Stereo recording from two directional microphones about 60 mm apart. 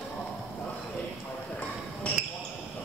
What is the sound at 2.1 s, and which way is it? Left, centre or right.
Basketball bounce, left.